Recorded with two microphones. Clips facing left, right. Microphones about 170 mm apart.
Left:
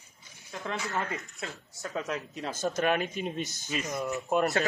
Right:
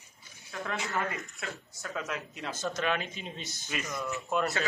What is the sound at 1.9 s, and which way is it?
Speech, 35° left (ahead or behind).